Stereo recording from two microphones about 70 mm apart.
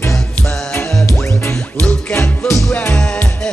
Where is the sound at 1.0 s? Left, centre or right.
Left.